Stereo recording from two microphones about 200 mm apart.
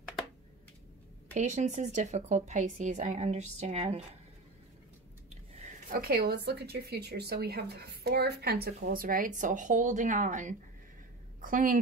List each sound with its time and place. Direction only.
1.3 s a woman's voice: 35° right (ahead or behind)
5.6 s a woman's voice: 40° right (ahead or behind)